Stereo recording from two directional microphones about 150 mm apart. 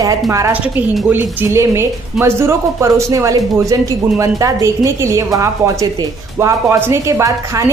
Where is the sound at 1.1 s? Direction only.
15° right (ahead or behind).